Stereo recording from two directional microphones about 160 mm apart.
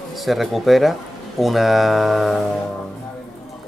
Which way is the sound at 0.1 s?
Centre (ahead or behind).